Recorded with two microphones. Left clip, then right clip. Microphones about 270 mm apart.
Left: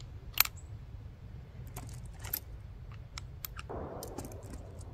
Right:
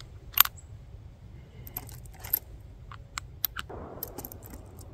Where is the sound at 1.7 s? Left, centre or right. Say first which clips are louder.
Right 3 dB; centre.